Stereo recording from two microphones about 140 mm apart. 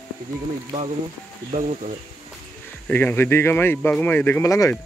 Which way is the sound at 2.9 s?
15° left (ahead or behind).